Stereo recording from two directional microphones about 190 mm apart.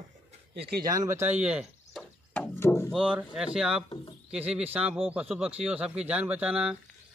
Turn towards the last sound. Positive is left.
turn(degrees=-5)  # may be behind; listen again after turning